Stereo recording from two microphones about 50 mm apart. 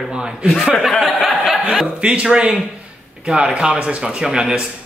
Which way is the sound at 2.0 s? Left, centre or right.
Right.